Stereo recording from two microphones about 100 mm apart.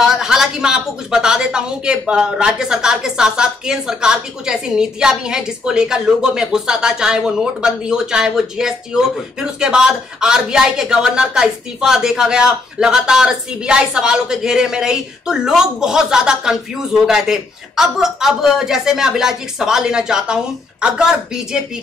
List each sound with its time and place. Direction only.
0.0 s a woman's voice: 5° right (ahead or behind)